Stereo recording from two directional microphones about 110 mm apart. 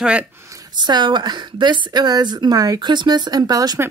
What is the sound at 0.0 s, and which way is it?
Speech, 10° right (ahead or behind).